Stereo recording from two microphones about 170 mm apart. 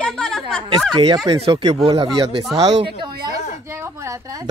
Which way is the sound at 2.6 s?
25° right (ahead or behind).